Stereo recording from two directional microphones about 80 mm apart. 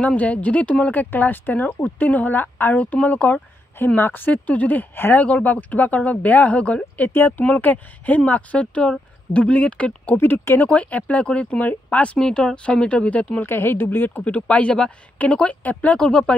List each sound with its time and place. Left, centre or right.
0.0 s speech: centre
10.1 s speech: left
13.5 s speech: left; by 16.3 s centre